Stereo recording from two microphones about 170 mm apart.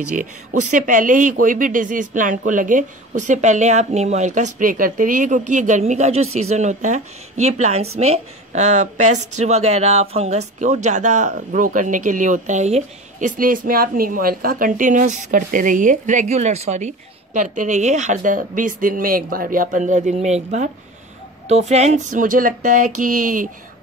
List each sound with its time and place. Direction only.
0.1 s speech: 50° right (ahead or behind)